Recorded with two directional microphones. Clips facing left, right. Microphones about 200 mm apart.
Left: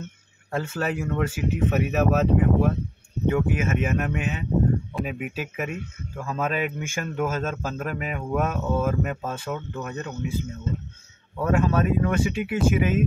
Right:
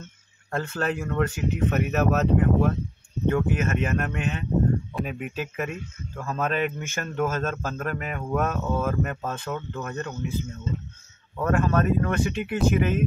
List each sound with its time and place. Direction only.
0.5 s a man's voice: 5° left (ahead or behind)
5.7 s speech: 60° left (ahead or behind)
6.1 s a man's voice: 10° left (ahead or behind)
10.7 s speech: 60° left (ahead or behind)
11.3 s a man's voice: 10° left (ahead or behind)